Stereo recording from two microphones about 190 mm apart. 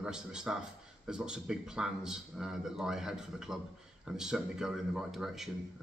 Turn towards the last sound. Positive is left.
turn(degrees=0)  # may be behind; listen again after turning